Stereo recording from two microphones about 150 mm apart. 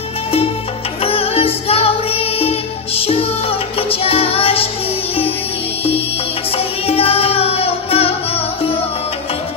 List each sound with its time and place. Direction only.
1.0 s music: 40° left (ahead or behind)
6.5 s music: 40° left (ahead or behind)